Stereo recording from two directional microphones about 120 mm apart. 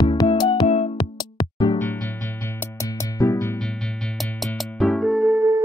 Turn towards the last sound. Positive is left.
turn(degrees=0)  # may be behind; listen again after turning